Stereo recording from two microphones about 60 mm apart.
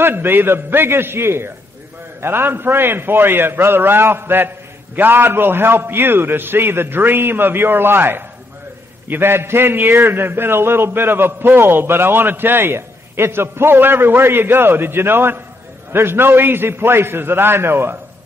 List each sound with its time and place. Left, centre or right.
0.0 s a man's voice: right